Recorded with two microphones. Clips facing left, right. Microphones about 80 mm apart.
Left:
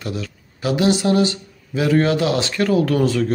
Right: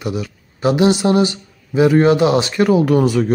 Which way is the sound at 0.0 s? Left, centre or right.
Centre.